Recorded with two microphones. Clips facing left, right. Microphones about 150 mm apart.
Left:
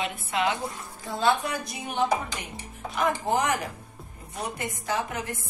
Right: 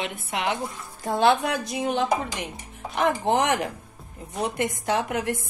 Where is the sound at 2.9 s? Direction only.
70° right (ahead or behind).